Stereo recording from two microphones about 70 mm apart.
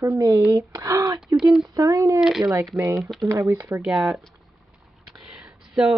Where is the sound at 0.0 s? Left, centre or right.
Right.